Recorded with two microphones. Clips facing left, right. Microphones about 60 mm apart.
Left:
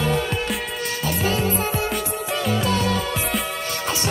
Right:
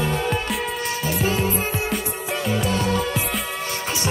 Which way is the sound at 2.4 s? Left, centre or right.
Right.